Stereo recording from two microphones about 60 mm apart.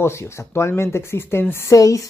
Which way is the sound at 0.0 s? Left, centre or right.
Left.